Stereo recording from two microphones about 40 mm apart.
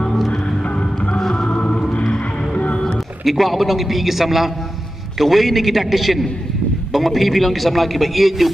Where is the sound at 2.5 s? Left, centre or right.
Left.